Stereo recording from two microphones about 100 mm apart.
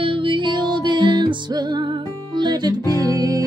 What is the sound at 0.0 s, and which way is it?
Music, 60° right (ahead or behind).